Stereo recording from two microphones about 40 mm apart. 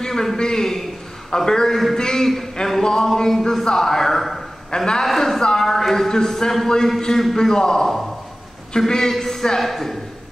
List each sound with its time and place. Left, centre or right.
0.0 s a man's voice: centre
4.6 s a man's voice: centre
5.0 s speech: centre